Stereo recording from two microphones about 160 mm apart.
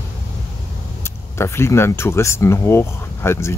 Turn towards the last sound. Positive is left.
turn(degrees=15)  # may be behind; listen again after turning